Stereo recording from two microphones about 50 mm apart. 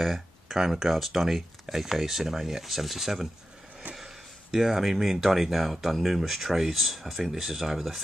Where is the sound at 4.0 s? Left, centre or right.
Centre.